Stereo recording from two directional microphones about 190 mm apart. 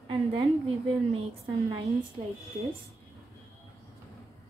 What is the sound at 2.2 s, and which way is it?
Speech, 30° right (ahead or behind).